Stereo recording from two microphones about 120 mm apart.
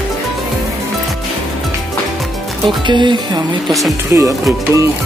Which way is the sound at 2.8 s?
40° right (ahead or behind).